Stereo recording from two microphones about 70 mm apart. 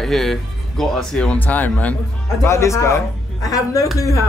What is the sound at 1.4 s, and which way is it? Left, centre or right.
Speech, left.